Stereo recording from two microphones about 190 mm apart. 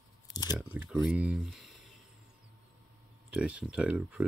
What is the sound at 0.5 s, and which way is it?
Speech, 5° right (ahead or behind).